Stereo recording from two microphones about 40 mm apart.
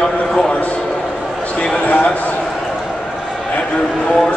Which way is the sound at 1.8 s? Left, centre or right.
Left.